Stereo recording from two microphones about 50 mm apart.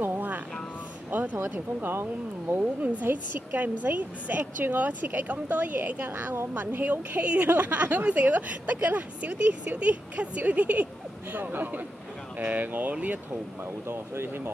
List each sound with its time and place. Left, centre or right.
0.0 s music: right
1.1 s a sound: right
2.6 s a woman's voice: right
3.1 s a woman's voice: right
13.7 s speech: right